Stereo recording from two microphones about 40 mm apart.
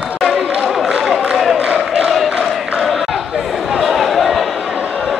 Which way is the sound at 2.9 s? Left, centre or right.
Centre.